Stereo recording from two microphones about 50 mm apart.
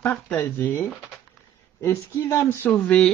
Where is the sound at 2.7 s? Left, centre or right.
Left.